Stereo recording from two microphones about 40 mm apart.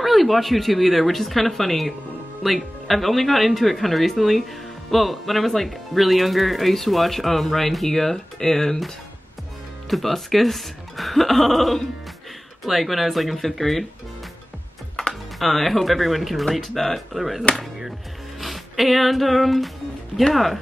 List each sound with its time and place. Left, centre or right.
0.0 s speech: centre
15.0 s music: centre
15.3 s speech: centre
18.4 s music: centre